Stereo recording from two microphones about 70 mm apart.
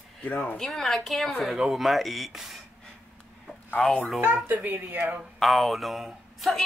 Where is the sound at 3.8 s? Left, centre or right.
Centre.